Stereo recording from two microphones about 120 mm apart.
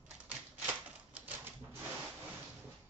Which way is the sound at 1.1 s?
15° right (ahead or behind).